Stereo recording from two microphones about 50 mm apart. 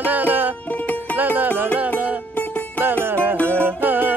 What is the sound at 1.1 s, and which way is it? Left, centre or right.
Music, right.